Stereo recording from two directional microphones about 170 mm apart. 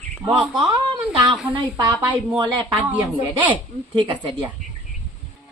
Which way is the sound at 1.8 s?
25° right (ahead or behind).